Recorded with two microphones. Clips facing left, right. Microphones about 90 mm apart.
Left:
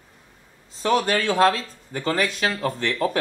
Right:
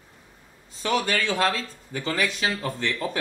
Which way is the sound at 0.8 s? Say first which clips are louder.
Left 4 dB; 35° left (ahead or behind).